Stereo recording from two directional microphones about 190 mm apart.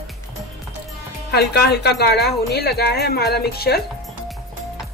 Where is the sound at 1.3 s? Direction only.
55° left (ahead or behind).